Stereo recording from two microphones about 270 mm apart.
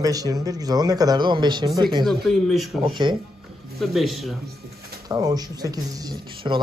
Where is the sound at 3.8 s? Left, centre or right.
Centre.